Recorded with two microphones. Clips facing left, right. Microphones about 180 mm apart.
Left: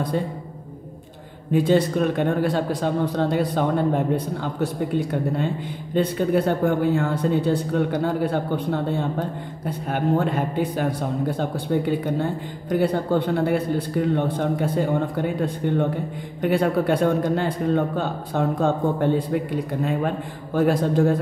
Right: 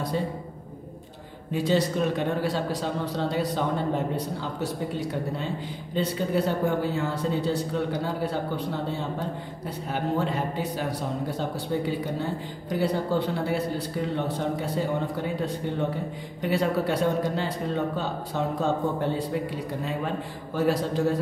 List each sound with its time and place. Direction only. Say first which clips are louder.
1.5 s speech: left 5 dB; 55° left (ahead or behind)
20.5 s speech: left 5 dB; 50° left (ahead or behind)